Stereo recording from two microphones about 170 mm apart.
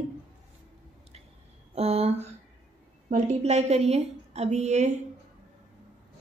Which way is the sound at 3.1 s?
40° right (ahead or behind).